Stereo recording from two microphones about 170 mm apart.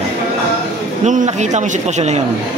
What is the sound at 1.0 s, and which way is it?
A man's voice, 45° right (ahead or behind).